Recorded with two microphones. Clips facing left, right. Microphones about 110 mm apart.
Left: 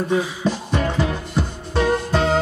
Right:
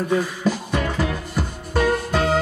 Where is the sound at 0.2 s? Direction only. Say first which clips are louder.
Left 1 dB; 5° left (ahead or behind).